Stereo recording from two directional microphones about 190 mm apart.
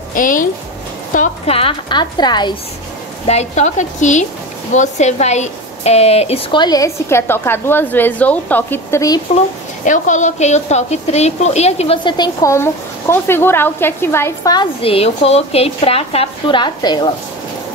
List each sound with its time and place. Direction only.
0.1 s a woman's voice: 45° left (ahead or behind); by 2.5 s 20° left (ahead or behind)
3.3 s a woman's voice: 35° left (ahead or behind); by 9.2 s 15° left (ahead or behind)
9.8 s a woman's voice: 40° left (ahead or behind); by 17.1 s 25° left (ahead or behind)